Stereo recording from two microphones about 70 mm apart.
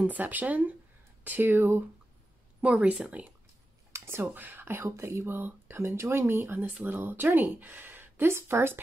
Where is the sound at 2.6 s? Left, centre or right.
Centre.